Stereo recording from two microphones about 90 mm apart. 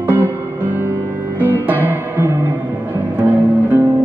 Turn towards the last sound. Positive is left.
turn(degrees=-20)  # may be behind; listen again after turning